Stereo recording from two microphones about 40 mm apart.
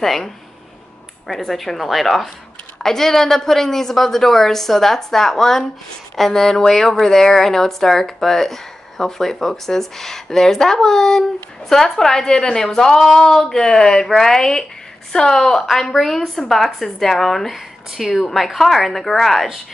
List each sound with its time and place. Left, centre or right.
0.0 s a woman's voice: centre
2.8 s a woman's voice: centre